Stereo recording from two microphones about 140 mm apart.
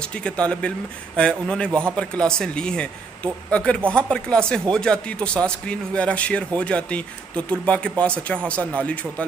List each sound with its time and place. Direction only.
0.2 s speech: 5° left (ahead or behind)
1.7 s speech: 15° right (ahead or behind)
2.0 s speech: 5° left (ahead or behind)